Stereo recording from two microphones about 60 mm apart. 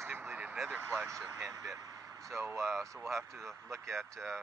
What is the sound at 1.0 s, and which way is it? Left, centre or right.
Speech, right.